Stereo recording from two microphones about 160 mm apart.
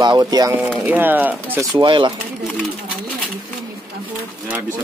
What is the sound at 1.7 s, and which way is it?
Speech, 30° right (ahead or behind).